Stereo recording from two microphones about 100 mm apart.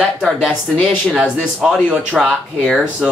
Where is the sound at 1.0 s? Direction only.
10° right (ahead or behind).